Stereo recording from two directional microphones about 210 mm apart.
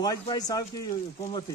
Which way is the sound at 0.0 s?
20° left (ahead or behind).